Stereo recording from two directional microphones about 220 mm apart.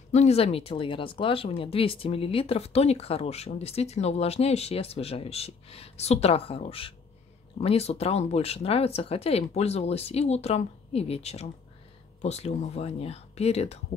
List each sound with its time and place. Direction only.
0.1 s speech: 30° left (ahead or behind)